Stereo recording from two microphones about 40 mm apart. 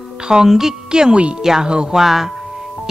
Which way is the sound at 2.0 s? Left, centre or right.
Centre.